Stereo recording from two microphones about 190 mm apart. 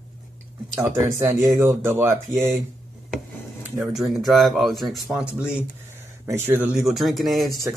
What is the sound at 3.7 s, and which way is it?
A man's voice, centre (ahead or behind).